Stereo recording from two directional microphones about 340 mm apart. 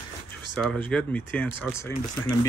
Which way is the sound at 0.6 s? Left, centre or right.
Centre.